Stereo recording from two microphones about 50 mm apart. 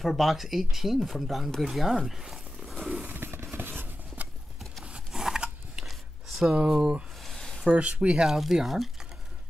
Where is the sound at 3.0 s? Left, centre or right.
Right.